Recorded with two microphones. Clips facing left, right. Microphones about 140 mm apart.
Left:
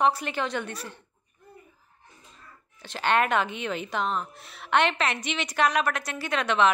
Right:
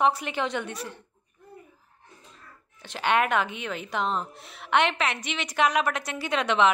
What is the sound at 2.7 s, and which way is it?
A woman's voice, 15° right (ahead or behind).